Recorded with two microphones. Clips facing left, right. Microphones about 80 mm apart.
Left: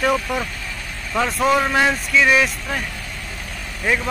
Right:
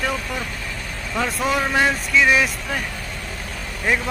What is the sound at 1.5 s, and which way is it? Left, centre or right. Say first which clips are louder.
Speech: left 1 dB; centre.